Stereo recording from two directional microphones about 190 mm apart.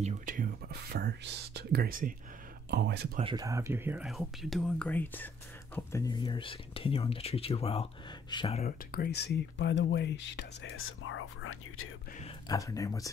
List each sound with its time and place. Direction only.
0.0 s speech: 45° right (ahead or behind)
2.7 s speech: 60° right (ahead or behind)
3.3 s speech: 15° right (ahead or behind); by 8.6 s 30° left (ahead or behind)
8.6 s speech: 55° left (ahead or behind); by 11.9 s 90° left
12.4 s speech: 15° left (ahead or behind)